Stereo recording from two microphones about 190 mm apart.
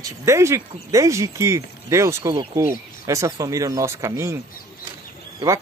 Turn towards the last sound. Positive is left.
turn(degrees=-15)  # may be behind; listen again after turning